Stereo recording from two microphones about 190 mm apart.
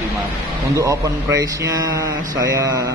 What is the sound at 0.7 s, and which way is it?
A man's voice, 15° right (ahead or behind).